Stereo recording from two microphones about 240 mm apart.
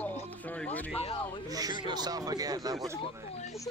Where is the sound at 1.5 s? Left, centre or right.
Centre.